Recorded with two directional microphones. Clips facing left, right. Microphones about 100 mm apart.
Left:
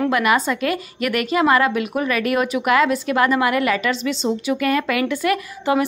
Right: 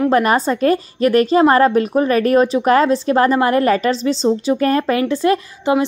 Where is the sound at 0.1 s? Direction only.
35° right (ahead or behind).